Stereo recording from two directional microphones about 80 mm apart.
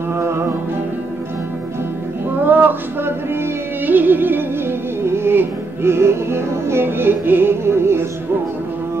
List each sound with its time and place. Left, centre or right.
0.1 s music: right
2.4 s a sound: right
3.8 s music: right